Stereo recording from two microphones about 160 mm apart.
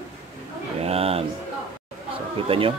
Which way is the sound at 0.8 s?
40° right (ahead or behind).